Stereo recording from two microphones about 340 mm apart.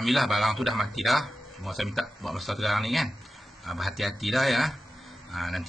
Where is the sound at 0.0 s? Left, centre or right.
Centre.